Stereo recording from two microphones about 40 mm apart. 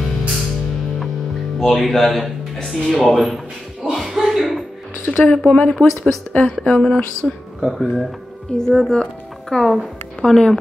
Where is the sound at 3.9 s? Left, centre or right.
Centre.